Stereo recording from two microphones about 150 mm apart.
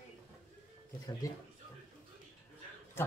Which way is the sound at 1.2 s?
20° left (ahead or behind).